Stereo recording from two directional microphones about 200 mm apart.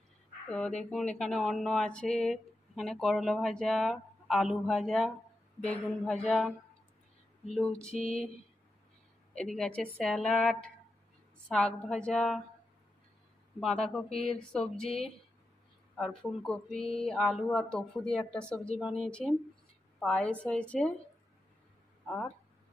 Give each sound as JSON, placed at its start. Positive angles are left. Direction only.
{"t": 0.5, "sound": "speech", "side_deg": 5}
{"t": 8.0, "sound": "a sound", "side_deg": 30}
{"t": 9.3, "sound": "speech", "side_deg": 5}
{"t": 13.6, "sound": "speech", "side_deg": 0}
{"t": 16.0, "sound": "speech", "side_deg": 0}
{"t": 22.0, "sound": "speech", "side_deg": 5}